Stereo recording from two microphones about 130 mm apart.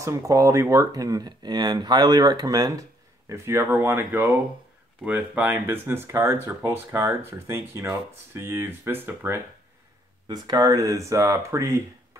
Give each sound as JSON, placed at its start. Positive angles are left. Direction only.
{"t": 0.0, "sound": "speech", "side_deg": -25}
{"t": 10.2, "sound": "speech", "side_deg": -30}